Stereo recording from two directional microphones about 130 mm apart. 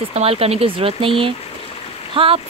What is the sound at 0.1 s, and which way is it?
Speech, 50° right (ahead or behind).